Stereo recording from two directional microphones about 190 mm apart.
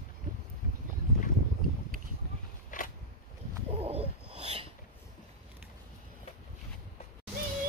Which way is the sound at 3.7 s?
30° right (ahead or behind).